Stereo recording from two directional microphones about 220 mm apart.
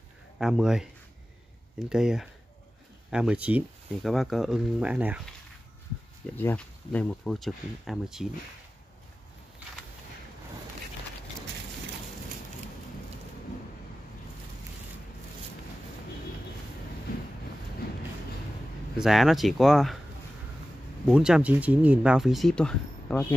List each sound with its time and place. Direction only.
0.4 s speech: centre (ahead or behind)
1.9 s speech: 5° right (ahead or behind)
6.3 s speech: 5° left (ahead or behind)
17.1 s wind noise: 40° left (ahead or behind)
18.9 s speech: centre (ahead or behind)
21.1 s speech: 5° right (ahead or behind)